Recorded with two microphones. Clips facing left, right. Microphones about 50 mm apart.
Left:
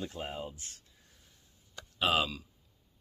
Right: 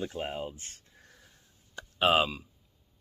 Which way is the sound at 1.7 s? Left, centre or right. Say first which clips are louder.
Right 5 dB; right.